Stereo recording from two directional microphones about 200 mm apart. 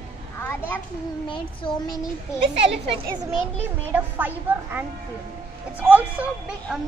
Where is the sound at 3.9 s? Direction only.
10° right (ahead or behind).